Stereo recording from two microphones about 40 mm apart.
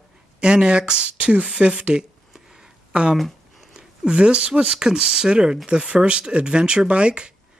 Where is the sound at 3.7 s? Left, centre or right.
Right.